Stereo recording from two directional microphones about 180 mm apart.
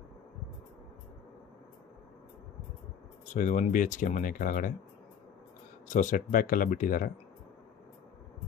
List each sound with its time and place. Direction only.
3.3 s speech: 45° left (ahead or behind)
5.9 s speech: 45° left (ahead or behind)